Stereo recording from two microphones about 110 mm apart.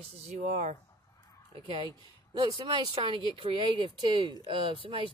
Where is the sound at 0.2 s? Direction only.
75° right (ahead or behind).